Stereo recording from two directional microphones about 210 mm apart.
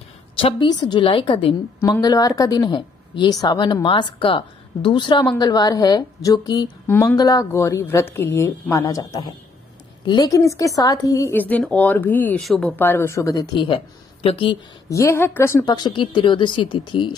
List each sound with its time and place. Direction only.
0.4 s a woman's voice: 25° left (ahead or behind)